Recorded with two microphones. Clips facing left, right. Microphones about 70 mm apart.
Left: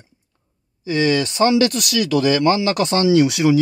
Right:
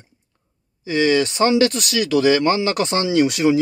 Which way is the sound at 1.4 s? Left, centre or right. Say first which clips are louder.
Left 2 dB; right.